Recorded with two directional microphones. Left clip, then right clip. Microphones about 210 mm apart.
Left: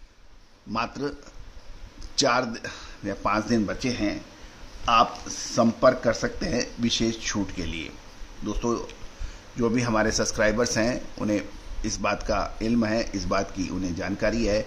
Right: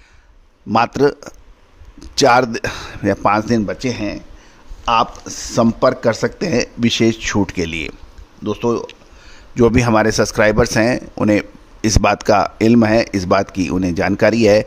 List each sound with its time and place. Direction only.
0.7 s speech: 55° right (ahead or behind)